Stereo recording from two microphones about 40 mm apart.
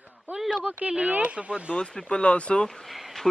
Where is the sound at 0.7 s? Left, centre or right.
Right.